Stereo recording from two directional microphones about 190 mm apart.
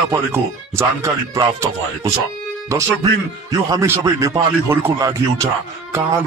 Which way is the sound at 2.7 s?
15° right (ahead or behind).